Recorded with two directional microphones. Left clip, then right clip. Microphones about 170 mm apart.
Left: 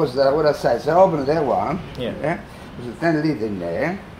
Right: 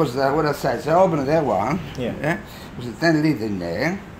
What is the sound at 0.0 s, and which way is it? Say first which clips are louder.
A man's voice: left 3 dB; 70° right (ahead or behind).